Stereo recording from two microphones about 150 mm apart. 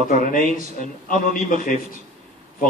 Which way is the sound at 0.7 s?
65° left (ahead or behind).